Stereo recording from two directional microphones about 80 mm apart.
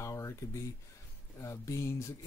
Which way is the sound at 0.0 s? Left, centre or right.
Left.